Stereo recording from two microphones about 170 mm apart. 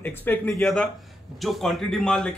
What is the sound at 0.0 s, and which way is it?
Speech, 10° left (ahead or behind).